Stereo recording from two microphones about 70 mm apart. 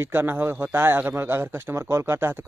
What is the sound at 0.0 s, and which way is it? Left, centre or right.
Speech, right.